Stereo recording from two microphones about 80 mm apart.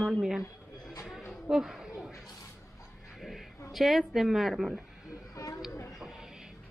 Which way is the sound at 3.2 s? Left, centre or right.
Centre.